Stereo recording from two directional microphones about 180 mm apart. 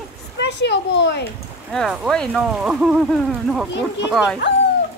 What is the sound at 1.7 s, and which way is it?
Speech, centre (ahead or behind).